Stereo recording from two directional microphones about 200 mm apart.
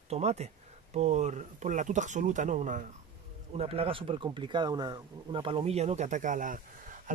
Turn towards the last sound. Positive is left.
turn(degrees=-40)  # may be behind; listen again after turning